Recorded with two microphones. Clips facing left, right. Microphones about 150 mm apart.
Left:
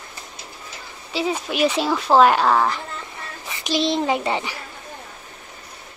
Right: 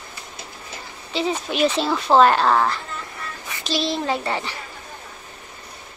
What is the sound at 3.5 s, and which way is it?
Speech, 20° left (ahead or behind).